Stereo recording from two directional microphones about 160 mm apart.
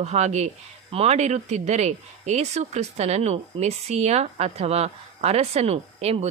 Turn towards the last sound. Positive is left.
turn(degrees=-40)  # may be behind; listen again after turning